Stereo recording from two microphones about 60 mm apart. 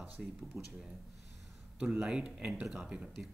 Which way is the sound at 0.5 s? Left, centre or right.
Right.